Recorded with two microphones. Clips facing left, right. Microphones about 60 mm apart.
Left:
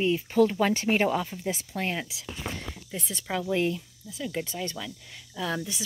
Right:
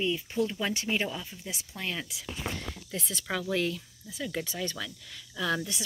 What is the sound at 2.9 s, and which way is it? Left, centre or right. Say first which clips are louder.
Speech: even; centre.